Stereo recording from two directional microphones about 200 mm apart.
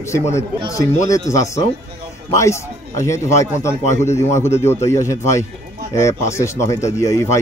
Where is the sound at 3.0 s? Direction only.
15° left (ahead or behind).